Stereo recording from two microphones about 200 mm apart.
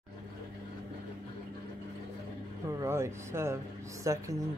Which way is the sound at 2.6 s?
15° right (ahead or behind).